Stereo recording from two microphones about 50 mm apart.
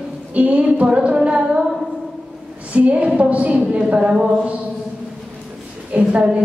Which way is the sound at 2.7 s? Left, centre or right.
Right.